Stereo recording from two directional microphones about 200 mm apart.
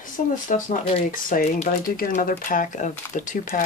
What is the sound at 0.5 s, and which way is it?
Speech, 45° left (ahead or behind).